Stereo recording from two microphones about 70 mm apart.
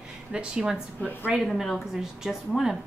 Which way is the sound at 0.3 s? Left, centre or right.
Centre.